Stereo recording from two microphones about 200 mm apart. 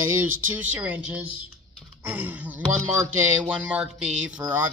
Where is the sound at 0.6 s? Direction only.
10° right (ahead or behind).